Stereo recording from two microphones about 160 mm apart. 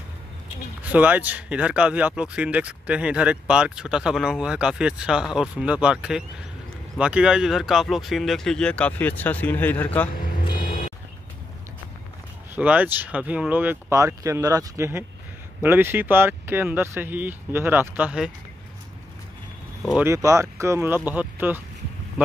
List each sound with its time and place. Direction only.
0.9 s speech: 10° right (ahead or behind); by 10.0 s 10° left (ahead or behind)
10.1 s vehicle: 65° left (ahead or behind)
12.5 s speech: 10° right (ahead or behind)
19.9 s speech: 15° right (ahead or behind)